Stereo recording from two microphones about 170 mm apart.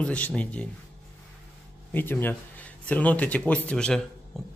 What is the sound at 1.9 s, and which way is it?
Speech, 10° left (ahead or behind).